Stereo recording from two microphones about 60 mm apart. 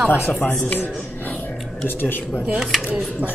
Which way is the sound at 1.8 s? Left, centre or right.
Left.